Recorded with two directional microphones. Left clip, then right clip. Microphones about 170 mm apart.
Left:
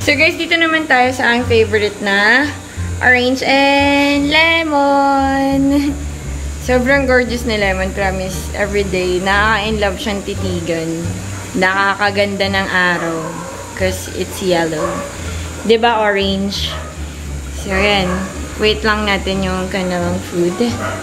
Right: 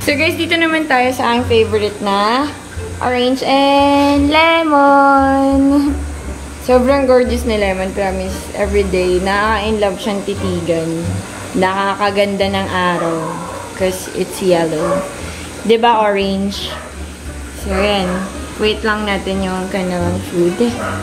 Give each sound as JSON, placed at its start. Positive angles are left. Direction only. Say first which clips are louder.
{"t": 0.0, "sound": "a woman's voice", "louder": "left 2 dB", "side_deg": -5}
{"t": 4.9, "sound": "a sound", "louder": "right 3 dB", "side_deg": 20}
{"t": 5.4, "sound": "a woman's voice", "louder": "right 2 dB", "side_deg": 0}
{"t": 15.7, "sound": "a woman's voice", "louder": "right 1 dB", "side_deg": -5}